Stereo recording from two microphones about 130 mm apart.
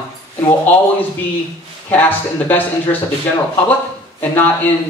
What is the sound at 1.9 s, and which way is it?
A man's voice, 15° left (ahead or behind).